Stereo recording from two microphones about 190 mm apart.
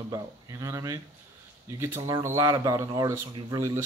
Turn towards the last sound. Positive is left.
turn(degrees=-15)  # may be behind; listen again after turning